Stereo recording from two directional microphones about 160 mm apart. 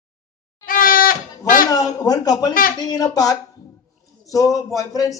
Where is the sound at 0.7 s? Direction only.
60° left (ahead or behind).